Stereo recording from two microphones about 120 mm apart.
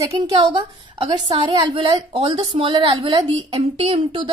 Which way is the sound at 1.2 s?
35° right (ahead or behind).